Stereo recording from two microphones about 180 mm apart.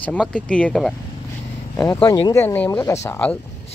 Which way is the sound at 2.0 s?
20° left (ahead or behind).